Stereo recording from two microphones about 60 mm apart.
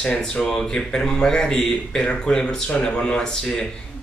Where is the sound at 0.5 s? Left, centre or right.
Centre.